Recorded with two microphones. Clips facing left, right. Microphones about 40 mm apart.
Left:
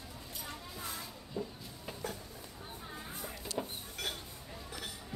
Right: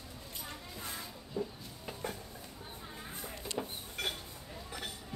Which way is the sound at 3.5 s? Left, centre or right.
Right.